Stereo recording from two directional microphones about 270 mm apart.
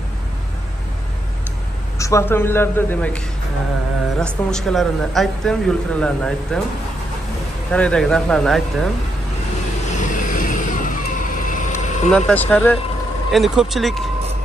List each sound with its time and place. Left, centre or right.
2.0 s a woman's voice: centre
4.2 s a man's voice: centre
7.7 s a man's voice: centre
9.8 s vehicle: left
12.1 s a man's voice: centre